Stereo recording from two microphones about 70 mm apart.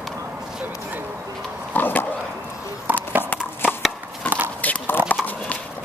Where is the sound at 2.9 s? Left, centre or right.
Right.